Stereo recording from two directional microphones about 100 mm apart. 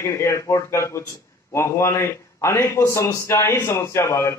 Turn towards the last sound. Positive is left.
turn(degrees=30)  # may be behind; listen again after turning